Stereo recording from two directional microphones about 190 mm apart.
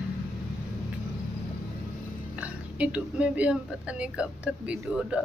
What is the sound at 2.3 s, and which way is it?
Speech, 5° right (ahead or behind).